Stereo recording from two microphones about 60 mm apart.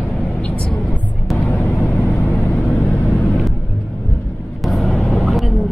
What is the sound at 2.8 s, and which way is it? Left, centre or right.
Vehicle, left.